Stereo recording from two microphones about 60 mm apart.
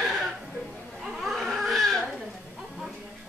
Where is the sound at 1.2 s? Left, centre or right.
Centre.